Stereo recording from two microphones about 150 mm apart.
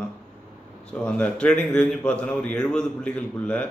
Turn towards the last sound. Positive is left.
turn(degrees=10)  # may be behind; listen again after turning